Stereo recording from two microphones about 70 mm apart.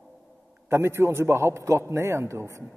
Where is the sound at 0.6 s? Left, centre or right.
Right.